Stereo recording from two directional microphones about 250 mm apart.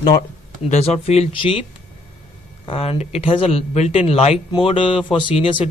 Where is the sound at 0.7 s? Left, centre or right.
Left.